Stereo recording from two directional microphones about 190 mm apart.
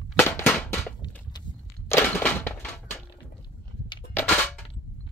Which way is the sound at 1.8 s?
10° left (ahead or behind).